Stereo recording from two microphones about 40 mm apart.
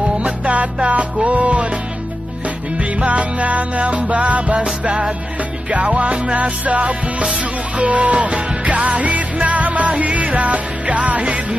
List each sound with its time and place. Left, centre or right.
0.2 s music: right
2.8 s music: right